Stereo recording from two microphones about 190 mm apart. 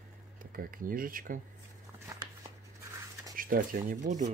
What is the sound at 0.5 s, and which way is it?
Speech, 50° right (ahead or behind).